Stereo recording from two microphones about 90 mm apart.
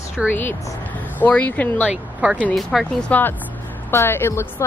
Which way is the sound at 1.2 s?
20° left (ahead or behind).